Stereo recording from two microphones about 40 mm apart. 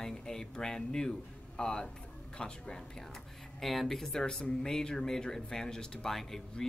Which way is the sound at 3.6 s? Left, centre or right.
Centre.